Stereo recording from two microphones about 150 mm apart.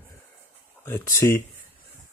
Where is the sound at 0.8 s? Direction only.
15° left (ahead or behind).